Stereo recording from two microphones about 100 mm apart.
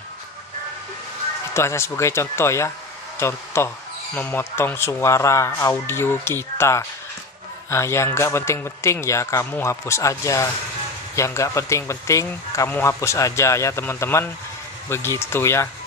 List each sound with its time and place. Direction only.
1.5 s speech: 25° left (ahead or behind)